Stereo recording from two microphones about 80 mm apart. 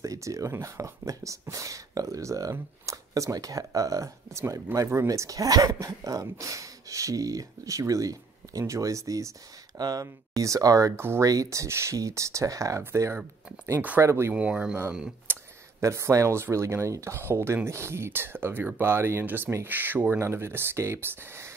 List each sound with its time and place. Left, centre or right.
0.0 s speech: right
11.0 s speech: right
11.2 s speech: right
14.3 s speech: centre
15.3 s tick: right
15.8 s speech: right